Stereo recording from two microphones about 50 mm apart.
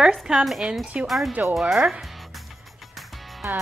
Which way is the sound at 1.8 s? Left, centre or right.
Centre.